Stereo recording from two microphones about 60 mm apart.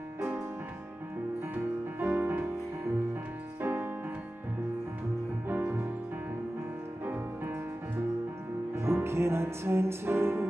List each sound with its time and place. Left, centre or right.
1.5 s music: right
3.6 s music: right
5.5 s music: right
8.7 s music: right